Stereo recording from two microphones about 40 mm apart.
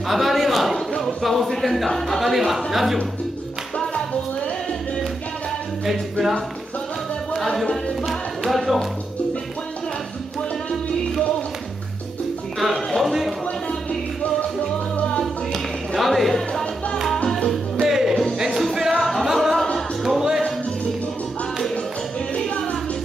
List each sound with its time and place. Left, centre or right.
0.1 s a man's voice: centre
3.8 s music: left
5.9 s music: centre
7.7 s music: centre
12.5 s music: centre
15.1 s music: centre
17.8 s music: centre